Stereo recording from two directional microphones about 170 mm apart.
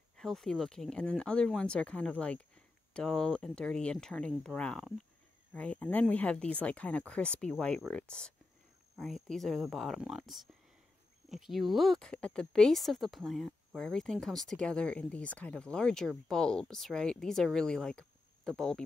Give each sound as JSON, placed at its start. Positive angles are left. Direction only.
{"t": 0.2, "sound": "speech", "side_deg": 0}